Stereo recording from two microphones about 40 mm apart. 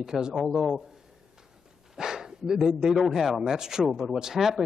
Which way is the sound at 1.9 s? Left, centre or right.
Centre.